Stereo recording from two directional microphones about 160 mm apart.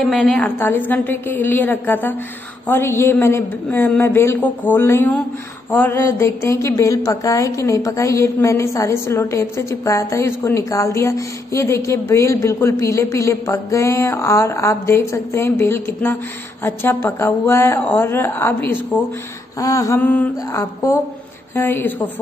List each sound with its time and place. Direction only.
0.0 s a woman's voice: centre (ahead or behind)
0.6 s a woman's voice: 10° left (ahead or behind)